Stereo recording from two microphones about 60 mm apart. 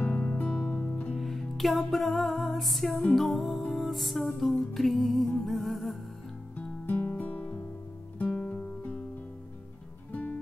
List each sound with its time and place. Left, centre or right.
0.0 s music: left
1.1 s music: centre
6.5 s music: left
10.1 s music: left